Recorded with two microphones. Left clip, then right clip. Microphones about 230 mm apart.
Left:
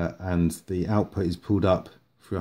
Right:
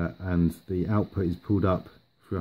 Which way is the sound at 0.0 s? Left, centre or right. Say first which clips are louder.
Left 2 dB; centre.